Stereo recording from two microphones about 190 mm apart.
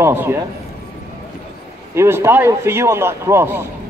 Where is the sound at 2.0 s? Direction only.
10° right (ahead or behind).